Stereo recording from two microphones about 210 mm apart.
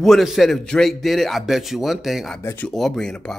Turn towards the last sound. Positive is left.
turn(degrees=5)  # may be behind; listen again after turning